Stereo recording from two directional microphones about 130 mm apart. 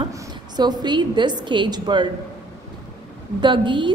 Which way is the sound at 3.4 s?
40° right (ahead or behind).